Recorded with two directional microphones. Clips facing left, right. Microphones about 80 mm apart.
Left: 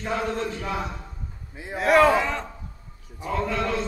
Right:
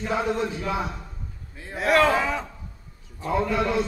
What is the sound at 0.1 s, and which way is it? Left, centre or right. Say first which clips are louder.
Speech: right 2 dB; centre.